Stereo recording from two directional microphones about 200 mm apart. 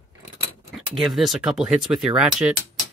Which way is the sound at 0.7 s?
Centre (ahead or behind).